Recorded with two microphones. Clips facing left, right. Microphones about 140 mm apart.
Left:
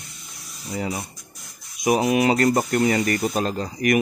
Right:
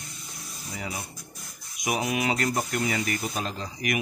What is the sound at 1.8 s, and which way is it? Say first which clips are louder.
Speech: left 8 dB; 40° left (ahead or behind).